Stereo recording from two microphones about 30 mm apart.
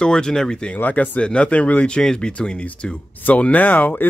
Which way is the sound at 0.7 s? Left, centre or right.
Left.